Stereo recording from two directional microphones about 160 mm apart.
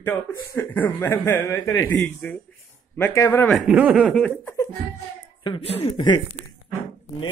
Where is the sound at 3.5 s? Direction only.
Centre (ahead or behind).